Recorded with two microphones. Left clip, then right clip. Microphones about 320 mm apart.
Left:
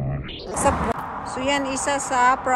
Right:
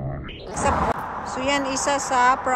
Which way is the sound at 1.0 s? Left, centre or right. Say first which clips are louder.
Even; right.